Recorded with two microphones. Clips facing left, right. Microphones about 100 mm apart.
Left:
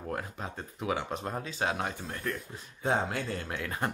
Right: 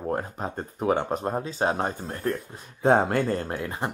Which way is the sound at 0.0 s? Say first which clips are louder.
Right 7 dB; 35° right (ahead or behind).